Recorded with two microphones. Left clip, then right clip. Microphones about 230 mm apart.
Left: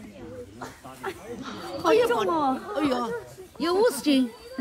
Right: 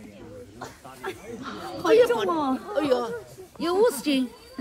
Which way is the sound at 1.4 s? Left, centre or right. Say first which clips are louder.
Right 1 dB; centre.